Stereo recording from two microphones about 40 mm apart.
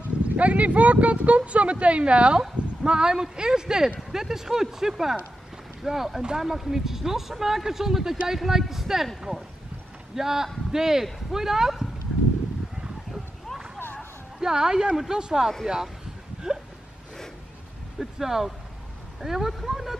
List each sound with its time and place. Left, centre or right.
0.4 s speech: right; by 9.1 s centre
10.1 s speech: centre
14.4 s speech: centre
17.9 s speech: centre